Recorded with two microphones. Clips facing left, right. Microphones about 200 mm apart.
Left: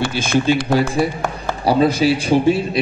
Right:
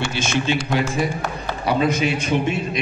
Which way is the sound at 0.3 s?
40° left (ahead or behind).